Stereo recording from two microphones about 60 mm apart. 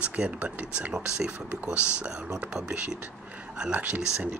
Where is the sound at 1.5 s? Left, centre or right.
Right.